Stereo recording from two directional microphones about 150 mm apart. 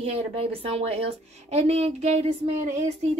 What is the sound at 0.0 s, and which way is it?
A woman's voice, 40° right (ahead or behind).